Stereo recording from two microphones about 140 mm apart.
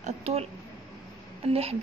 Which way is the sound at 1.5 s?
45° right (ahead or behind).